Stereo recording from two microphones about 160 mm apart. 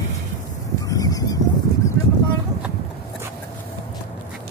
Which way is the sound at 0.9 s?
20° left (ahead or behind).